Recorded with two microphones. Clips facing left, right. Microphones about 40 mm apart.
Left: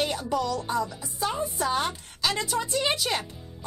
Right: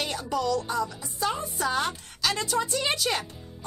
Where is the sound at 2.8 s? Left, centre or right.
Centre.